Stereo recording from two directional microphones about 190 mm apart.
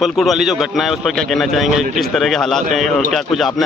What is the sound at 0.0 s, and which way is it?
A man's voice, centre (ahead or behind).